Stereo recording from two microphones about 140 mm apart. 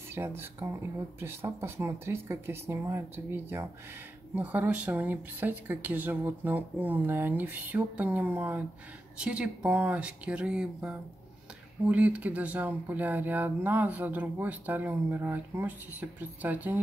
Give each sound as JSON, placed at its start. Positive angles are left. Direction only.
{"t": 0.1, "sound": "speech", "side_deg": -15}